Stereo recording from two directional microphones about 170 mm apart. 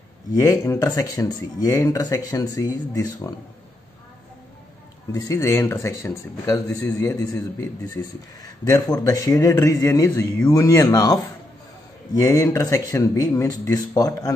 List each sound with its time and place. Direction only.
0.3 s speech: 20° left (ahead or behind)
5.1 s speech: 20° left (ahead or behind)